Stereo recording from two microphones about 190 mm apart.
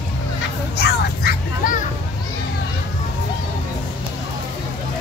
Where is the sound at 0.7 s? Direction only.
55° left (ahead or behind).